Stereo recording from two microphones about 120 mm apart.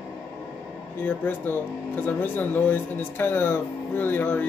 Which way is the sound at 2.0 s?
15° left (ahead or behind).